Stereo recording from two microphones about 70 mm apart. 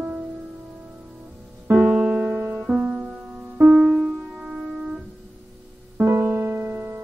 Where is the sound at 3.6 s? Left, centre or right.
Right.